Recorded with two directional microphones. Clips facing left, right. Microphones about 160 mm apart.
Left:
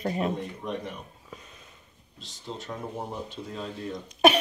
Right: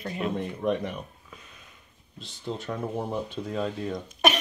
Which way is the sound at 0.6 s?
70° right (ahead or behind).